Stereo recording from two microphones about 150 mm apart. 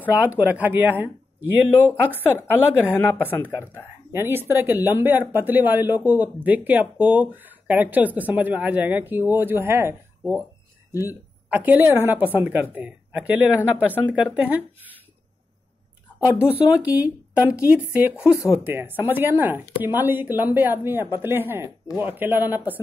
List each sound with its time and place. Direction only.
0.1 s speech: 10° right (ahead or behind)
2.1 s a woman's voice: 15° left (ahead or behind)
4.1 s speech: 15° right (ahead or behind)
11.1 s a woman's voice: 10° right (ahead or behind)
16.2 s speech: 20° left (ahead or behind)
17.0 s speech: 10° right (ahead or behind)
18.2 s speech: 20° left (ahead or behind)
18.6 s speech: 15° right (ahead or behind)